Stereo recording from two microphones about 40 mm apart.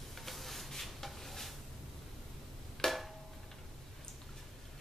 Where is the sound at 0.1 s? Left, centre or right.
Centre.